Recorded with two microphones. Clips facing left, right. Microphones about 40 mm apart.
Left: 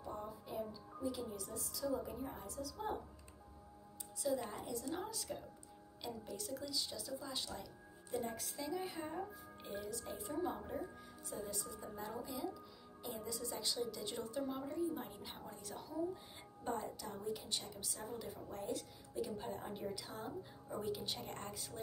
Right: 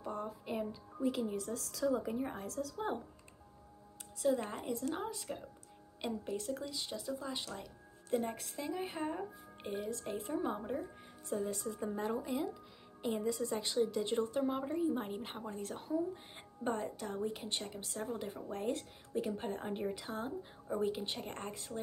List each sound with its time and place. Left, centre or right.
0.0 s music: right
1.3 s a woman's voice: right
4.2 s a woman's voice: right
4.9 s a woman's voice: right
5.9 s a woman's voice: right
20.6 s a woman's voice: right